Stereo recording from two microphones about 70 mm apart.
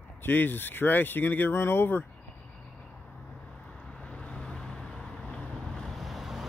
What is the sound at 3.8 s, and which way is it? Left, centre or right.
Vehicle, centre.